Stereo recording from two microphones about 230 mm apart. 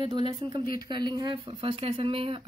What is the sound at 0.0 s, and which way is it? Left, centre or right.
A woman's voice, right.